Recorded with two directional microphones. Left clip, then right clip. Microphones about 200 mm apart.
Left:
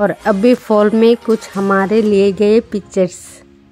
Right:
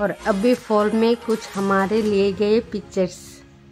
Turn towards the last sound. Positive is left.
turn(degrees=30)  # may be behind; listen again after turning